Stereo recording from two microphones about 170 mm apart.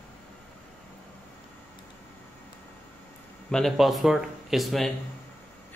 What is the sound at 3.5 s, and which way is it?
Speech, centre (ahead or behind).